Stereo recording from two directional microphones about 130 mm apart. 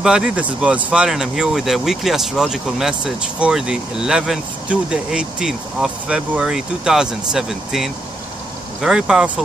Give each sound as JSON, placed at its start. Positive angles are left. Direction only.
{"t": 0.0, "sound": "speech", "side_deg": -5}